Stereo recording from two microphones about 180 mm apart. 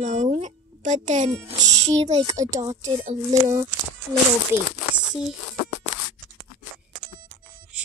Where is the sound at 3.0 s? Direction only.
40° right (ahead or behind).